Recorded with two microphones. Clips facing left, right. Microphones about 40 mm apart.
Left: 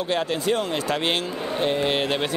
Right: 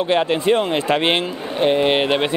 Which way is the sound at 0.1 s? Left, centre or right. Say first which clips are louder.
Right 6 dB; right.